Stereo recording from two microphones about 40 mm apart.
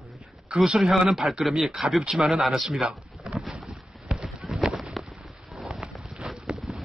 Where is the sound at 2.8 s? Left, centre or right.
Right.